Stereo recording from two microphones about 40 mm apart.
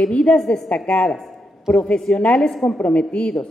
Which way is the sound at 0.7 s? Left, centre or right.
Left.